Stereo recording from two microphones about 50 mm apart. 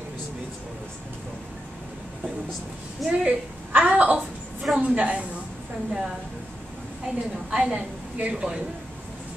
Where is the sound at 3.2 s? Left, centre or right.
Right.